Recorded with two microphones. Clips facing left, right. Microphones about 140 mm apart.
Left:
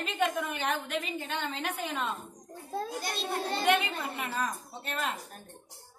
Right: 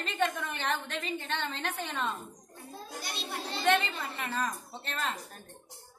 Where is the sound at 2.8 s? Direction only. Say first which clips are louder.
Left 7 dB; 50° left (ahead or behind).